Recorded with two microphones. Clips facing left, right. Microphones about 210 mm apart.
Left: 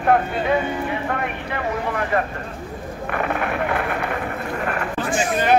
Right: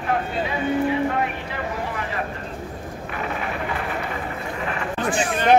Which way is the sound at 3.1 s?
60° left (ahead or behind).